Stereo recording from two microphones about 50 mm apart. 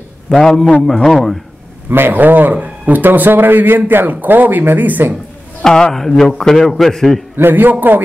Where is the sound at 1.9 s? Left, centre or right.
Right.